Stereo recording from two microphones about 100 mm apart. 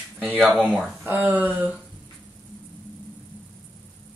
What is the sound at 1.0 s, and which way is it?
Speech, 15° right (ahead or behind).